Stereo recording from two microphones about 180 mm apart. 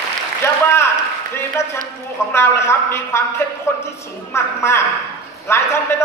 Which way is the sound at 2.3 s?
15° left (ahead or behind).